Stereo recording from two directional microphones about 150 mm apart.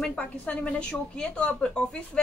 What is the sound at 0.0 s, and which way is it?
A woman's voice, 5° left (ahead or behind).